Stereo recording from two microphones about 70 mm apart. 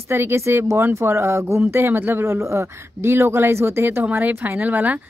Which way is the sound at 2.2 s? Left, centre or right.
Right.